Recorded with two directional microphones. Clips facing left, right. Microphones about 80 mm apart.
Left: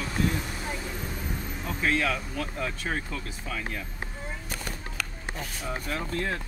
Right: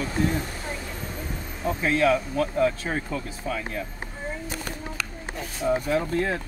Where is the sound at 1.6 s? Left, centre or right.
Centre.